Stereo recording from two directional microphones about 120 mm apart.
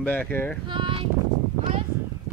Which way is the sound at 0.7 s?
45° right (ahead or behind).